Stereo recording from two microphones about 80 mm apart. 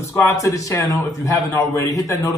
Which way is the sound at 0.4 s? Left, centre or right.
Left.